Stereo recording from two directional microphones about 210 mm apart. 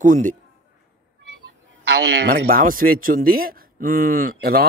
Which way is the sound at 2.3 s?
45° right (ahead or behind).